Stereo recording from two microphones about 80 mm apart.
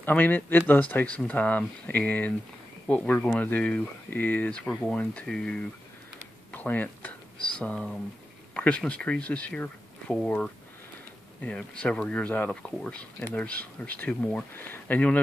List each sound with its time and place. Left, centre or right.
0.0 s speech: left
6.5 s speech: left
11.4 s speech: centre